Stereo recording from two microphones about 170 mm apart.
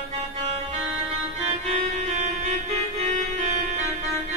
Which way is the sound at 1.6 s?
50° right (ahead or behind).